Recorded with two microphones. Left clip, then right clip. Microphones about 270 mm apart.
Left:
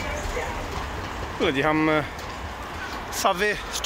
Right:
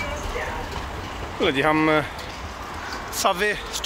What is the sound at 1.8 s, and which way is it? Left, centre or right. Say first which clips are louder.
Speech: right 2 dB; centre.